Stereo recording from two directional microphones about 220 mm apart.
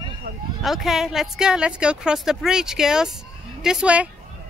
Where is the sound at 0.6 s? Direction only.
Centre (ahead or behind).